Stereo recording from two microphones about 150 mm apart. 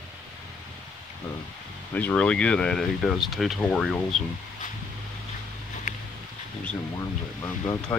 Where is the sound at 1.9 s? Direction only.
10° left (ahead or behind).